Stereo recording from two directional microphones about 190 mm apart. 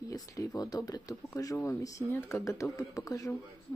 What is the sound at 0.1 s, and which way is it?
Speech, 20° left (ahead or behind).